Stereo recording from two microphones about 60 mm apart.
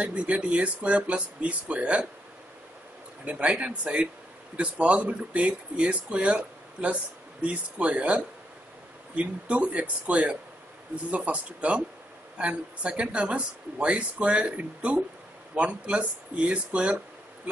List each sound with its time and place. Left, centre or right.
0.0 s speech: right
3.3 s speech: right